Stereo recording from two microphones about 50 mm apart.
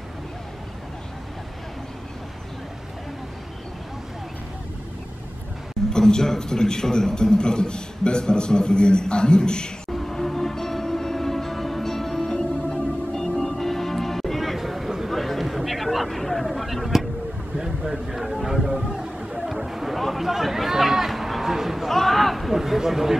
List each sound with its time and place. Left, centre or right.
5.9 s a man's voice: centre
9.9 s music: centre
17.6 s a sound: centre